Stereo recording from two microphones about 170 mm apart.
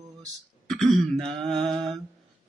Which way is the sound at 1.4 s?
Centre (ahead or behind).